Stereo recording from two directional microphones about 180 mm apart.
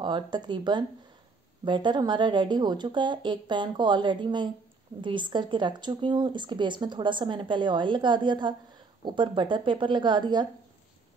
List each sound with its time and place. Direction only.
0.0 s speech: 25° right (ahead or behind)